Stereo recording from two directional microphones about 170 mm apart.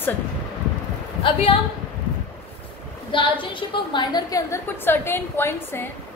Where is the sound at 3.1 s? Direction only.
30° left (ahead or behind).